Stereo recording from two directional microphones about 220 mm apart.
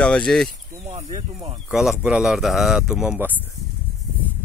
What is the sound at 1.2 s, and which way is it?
Speech, 25° right (ahead or behind).